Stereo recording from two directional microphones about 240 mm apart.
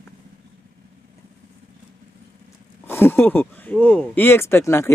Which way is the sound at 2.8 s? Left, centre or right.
Centre.